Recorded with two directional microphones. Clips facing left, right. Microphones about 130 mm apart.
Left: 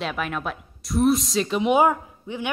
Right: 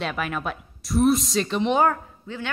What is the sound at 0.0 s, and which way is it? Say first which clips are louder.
A woman's voice: even; centre (ahead or behind).